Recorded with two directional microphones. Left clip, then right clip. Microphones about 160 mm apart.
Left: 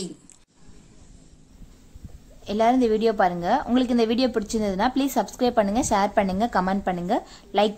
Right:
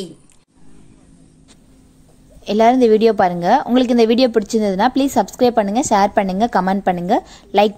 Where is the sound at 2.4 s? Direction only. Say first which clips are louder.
Right 8 dB; 35° right (ahead or behind).